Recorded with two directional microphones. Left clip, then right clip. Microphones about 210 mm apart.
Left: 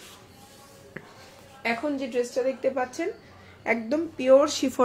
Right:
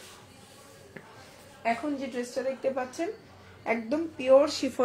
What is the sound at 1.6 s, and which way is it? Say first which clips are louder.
Speech: left 2 dB; 40° left (ahead or behind).